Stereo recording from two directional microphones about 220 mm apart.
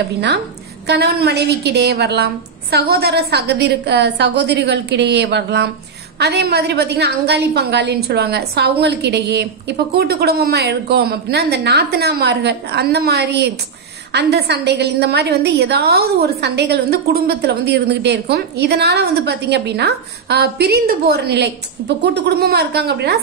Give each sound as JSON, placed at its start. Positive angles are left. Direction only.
{"t": 0.8, "sound": "a woman's voice", "side_deg": -45}